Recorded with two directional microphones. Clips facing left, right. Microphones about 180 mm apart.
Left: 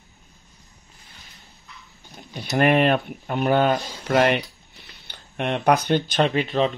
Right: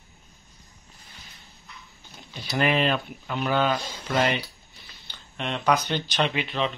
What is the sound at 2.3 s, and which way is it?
Speech, 55° left (ahead or behind).